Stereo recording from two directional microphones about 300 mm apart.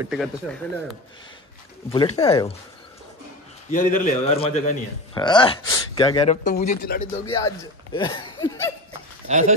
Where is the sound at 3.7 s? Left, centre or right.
Left.